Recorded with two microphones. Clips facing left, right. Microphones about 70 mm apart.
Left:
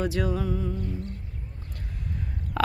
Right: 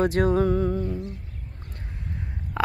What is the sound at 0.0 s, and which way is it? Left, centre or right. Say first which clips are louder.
Music: right 7 dB; right.